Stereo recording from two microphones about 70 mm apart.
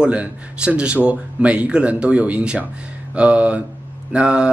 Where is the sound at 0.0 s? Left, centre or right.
Centre.